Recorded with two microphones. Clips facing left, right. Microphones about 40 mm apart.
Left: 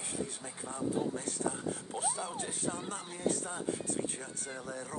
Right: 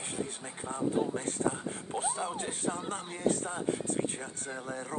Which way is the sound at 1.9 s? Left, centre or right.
Right.